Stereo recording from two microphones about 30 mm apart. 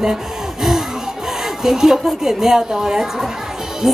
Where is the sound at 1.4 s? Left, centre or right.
Centre.